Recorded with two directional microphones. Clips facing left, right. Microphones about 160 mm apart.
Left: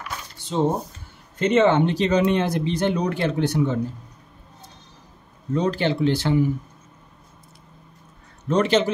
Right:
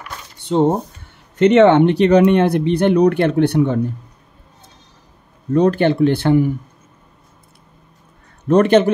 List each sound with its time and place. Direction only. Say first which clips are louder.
0.4 s speech: right 7 dB; 60° right (ahead or behind)
5.5 s speech: right 8 dB; 55° right (ahead or behind)
8.5 s speech: right 7 dB; 55° right (ahead or behind)